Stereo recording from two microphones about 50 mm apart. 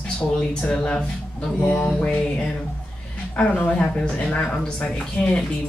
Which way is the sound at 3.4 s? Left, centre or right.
Left.